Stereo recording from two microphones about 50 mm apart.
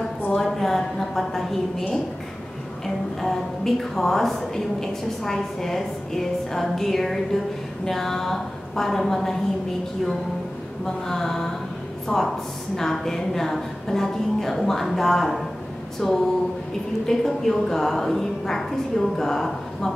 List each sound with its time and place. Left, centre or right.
0.4 s a sound: centre
3.2 s a woman's voice: centre
11.1 s a woman's voice: centre
12.1 s a woman's voice: centre